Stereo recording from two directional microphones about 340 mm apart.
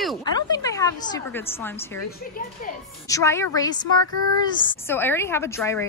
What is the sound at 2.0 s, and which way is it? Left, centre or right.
Speech, left.